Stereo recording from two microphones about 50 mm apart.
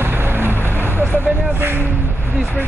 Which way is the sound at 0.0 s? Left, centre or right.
Right.